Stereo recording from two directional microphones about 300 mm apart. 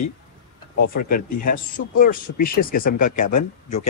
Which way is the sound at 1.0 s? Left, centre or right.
Left.